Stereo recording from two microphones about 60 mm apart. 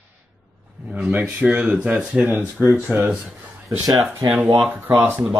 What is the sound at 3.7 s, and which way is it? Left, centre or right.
Speech, right.